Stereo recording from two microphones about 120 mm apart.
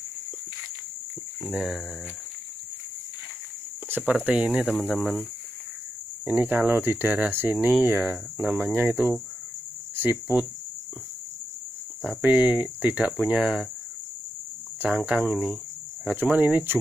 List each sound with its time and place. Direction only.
1.5 s speech: 5° right (ahead or behind)
3.9 s speech: 10° right (ahead or behind)
4.6 s speech: 5° left (ahead or behind)
6.2 s speech: 15° right (ahead or behind)
12.2 s speech: 10° right (ahead or behind)
15.0 s speech: 10° right (ahead or behind)